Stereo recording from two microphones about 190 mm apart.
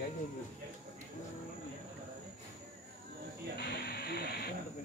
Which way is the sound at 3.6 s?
55° left (ahead or behind).